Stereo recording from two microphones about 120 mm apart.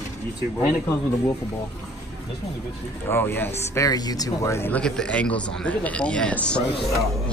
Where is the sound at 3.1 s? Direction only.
15° left (ahead or behind).